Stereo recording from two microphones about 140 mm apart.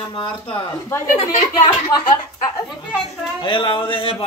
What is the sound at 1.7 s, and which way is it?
Speech, 30° left (ahead or behind).